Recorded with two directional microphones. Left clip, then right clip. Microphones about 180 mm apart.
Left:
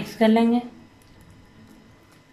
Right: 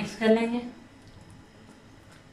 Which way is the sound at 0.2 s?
50° left (ahead or behind).